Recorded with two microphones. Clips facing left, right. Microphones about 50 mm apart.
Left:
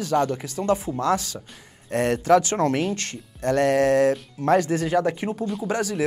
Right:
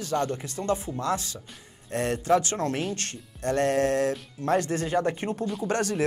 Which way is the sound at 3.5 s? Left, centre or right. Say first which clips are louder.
Left 4 dB; left.